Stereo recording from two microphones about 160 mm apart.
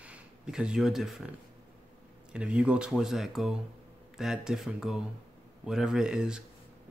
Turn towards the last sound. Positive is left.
turn(degrees=-5)  # may be behind; listen again after turning